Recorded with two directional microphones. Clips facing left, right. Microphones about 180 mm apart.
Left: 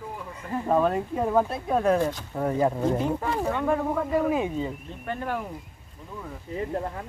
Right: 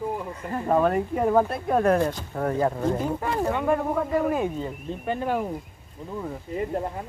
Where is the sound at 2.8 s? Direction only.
5° right (ahead or behind).